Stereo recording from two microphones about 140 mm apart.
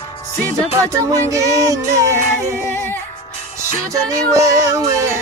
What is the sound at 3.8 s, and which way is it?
Speech, 20° right (ahead or behind).